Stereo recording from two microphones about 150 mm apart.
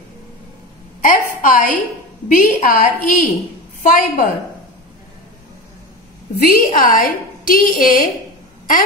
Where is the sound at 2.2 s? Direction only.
65° left (ahead or behind).